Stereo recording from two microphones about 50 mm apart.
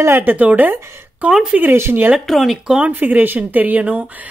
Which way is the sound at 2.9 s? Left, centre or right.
Right.